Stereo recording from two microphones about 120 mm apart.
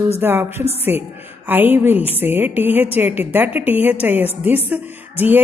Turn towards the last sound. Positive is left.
turn(degrees=-15)  # may be behind; listen again after turning